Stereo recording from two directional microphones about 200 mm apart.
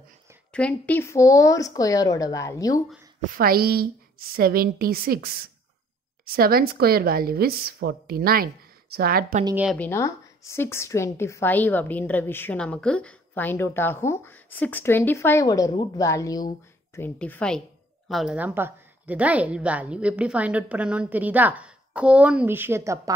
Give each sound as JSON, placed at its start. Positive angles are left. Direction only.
{"t": 0.5, "sound": "a woman's voice", "side_deg": 5}
{"t": 3.2, "sound": "speech", "side_deg": -45}
{"t": 9.8, "sound": "a woman's voice", "side_deg": 15}